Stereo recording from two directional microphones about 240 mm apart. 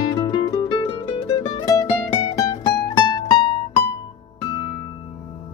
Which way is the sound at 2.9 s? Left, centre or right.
Centre.